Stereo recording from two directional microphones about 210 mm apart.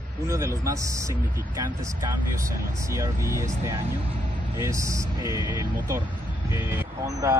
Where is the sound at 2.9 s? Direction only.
15° right (ahead or behind).